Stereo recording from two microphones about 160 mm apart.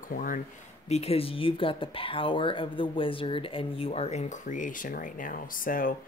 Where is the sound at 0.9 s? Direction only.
40° left (ahead or behind).